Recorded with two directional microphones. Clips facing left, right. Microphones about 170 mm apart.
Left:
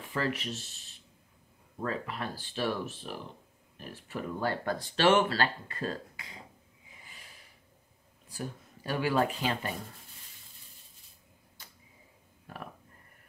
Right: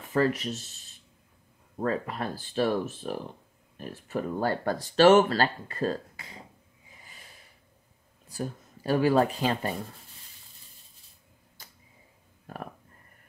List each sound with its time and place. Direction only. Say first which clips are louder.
0.1 s speech: right 7 dB; 45° right (ahead or behind)
1.9 s speech: right 5 dB; 40° right (ahead or behind)
8.4 s speech: right 5 dB; 35° right (ahead or behind)